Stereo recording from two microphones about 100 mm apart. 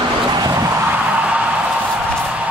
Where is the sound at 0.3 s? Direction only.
40° right (ahead or behind).